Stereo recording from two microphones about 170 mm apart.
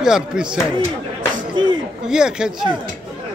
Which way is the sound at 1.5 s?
25° right (ahead or behind).